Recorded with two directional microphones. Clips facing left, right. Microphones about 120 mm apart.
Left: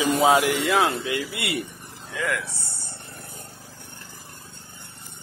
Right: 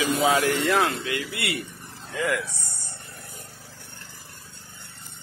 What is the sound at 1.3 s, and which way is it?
Speech, 20° left (ahead or behind).